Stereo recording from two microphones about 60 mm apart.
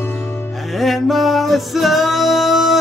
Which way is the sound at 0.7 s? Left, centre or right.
Centre.